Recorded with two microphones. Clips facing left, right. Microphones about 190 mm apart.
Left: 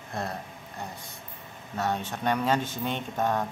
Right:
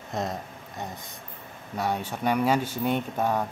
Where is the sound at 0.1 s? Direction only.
20° right (ahead or behind).